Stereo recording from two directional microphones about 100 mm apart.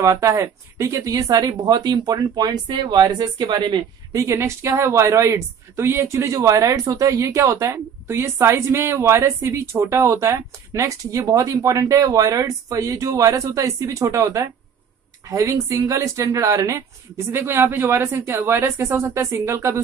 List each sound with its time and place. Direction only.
0.0 s speech: 30° right (ahead or behind); by 3.8 s 50° right (ahead or behind)
4.1 s speech: 30° right (ahead or behind)